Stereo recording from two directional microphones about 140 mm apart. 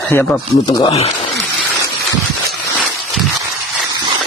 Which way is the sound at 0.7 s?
40° left (ahead or behind).